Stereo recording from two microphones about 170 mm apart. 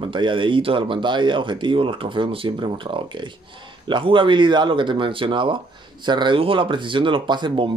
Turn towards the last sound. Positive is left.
turn(degrees=-25)  # may be behind; listen again after turning